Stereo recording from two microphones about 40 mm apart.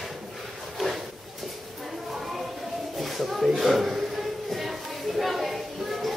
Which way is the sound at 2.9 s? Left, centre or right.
Centre.